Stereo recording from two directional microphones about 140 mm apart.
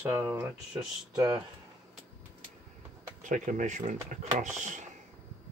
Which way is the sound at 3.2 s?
65° right (ahead or behind).